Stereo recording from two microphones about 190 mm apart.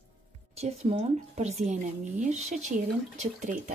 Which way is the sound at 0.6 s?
30° right (ahead or behind).